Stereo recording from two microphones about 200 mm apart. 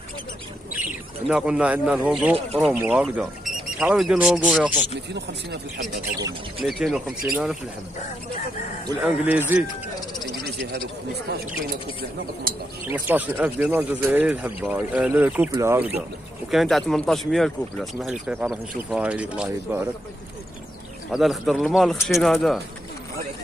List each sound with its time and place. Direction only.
0.7 s speech: 5° right (ahead or behind)
6.6 s speech: centre (ahead or behind)
9.0 s speech: 5° right (ahead or behind)
11.2 s speech: 50° right (ahead or behind)
12.8 s speech: 10° right (ahead or behind)
16.4 s speech: centre (ahead or behind)
21.1 s speech: centre (ahead or behind)